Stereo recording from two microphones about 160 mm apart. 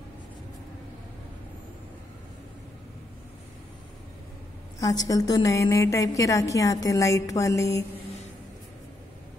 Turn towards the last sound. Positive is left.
turn(degrees=20)  # may be behind; listen again after turning